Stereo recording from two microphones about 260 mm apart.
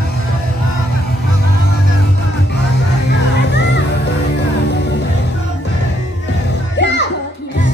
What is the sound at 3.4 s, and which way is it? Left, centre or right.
Music, left.